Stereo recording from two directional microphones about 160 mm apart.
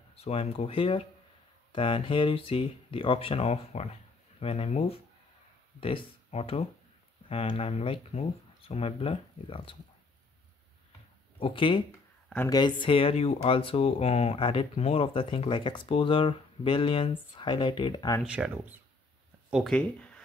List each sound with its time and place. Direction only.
0.1 s speech: 40° left (ahead or behind)
11.3 s speech: 35° left (ahead or behind)
18.2 s speech: 5° right (ahead or behind)
19.5 s speech: 5° left (ahead or behind)